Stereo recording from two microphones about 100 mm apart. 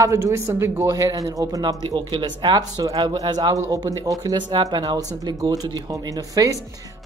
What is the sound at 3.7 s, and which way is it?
A woman's voice, 35° right (ahead or behind).